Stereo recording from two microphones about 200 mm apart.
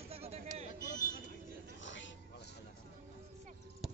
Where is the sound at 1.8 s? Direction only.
65° left (ahead or behind).